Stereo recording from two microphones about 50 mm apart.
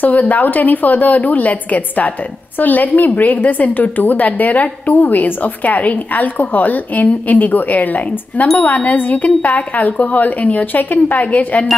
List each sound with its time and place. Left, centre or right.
0.0 s a woman's voice: left